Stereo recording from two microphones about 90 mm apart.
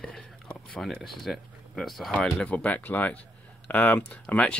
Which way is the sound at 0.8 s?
Centre (ahead or behind).